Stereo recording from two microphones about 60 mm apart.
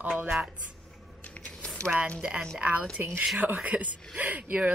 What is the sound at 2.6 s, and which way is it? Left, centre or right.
Speech, right.